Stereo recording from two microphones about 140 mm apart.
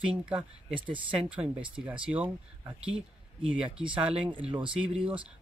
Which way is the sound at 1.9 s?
10° right (ahead or behind).